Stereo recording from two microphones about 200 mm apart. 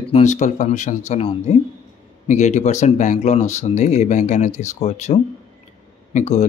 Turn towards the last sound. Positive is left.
turn(degrees=35)  # may be behind; listen again after turning